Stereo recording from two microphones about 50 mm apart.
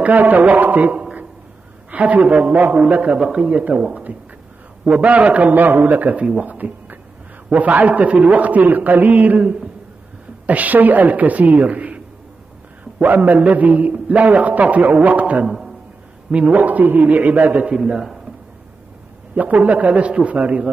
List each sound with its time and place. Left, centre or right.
0.0 s a man's voice: right
9.4 s a man's voice: right
10.4 s a man's voice: right
13.0 s a man's voice: right
15.4 s music: centre
16.3 s a man's voice: right
19.3 s a man's voice: right